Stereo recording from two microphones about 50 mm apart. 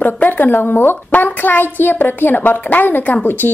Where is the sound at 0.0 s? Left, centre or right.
Left.